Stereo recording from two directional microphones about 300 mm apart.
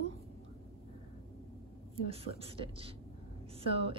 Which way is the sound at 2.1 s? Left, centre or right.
Centre.